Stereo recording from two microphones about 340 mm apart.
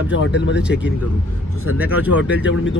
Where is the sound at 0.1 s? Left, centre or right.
Left.